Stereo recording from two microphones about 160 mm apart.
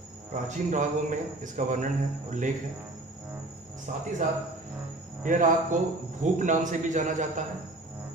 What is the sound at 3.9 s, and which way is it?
Speech, 55° right (ahead or behind).